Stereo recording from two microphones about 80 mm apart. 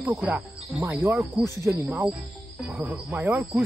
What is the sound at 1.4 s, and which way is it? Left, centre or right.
Speech, right.